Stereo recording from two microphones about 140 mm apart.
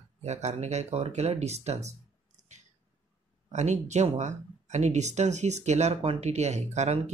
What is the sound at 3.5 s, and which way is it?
Speech, 55° right (ahead or behind).